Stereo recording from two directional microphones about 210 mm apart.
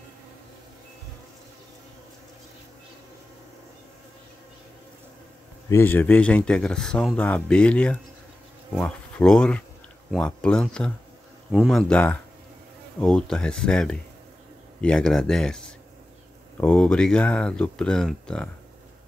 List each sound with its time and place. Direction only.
5.7 s speech: 10° left (ahead or behind)